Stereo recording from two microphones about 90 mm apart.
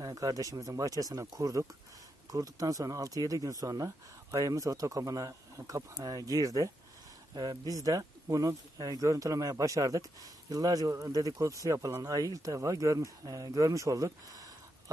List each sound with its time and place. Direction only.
0.0 s speech: 40° right (ahead or behind)
7.7 s speech: 40° right (ahead or behind)